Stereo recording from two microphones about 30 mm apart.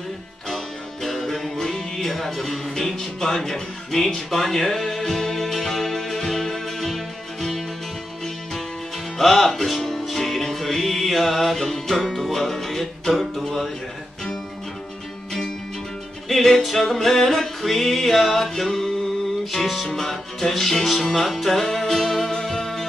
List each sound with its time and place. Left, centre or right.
1.0 s music: centre
9.2 s music: centre
13.1 s music: centre
16.3 s music: centre